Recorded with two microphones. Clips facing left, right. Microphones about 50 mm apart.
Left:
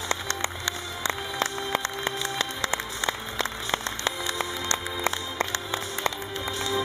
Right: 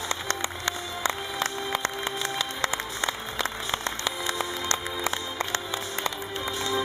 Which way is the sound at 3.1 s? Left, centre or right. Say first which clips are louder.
Left 2 dB; centre.